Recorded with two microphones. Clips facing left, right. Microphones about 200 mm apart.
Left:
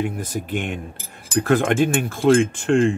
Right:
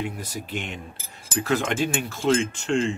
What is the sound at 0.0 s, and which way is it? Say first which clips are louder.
Speech: left 6 dB; 50° left (ahead or behind).